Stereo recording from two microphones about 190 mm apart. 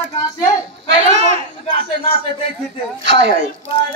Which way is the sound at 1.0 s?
35° right (ahead or behind).